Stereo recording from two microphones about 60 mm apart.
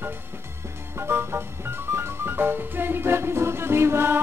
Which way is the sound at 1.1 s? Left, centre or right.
Right.